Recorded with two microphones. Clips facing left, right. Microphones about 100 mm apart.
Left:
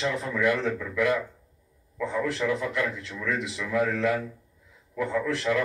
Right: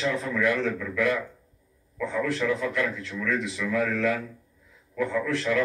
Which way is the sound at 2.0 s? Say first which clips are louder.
Right 1 dB; 20° left (ahead or behind).